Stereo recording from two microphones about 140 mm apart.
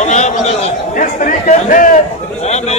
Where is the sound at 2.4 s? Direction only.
50° left (ahead or behind).